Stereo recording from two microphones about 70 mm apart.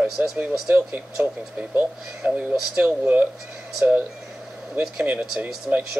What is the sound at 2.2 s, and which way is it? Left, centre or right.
Speech, centre.